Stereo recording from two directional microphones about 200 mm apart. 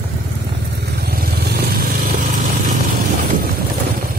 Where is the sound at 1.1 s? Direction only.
50° right (ahead or behind).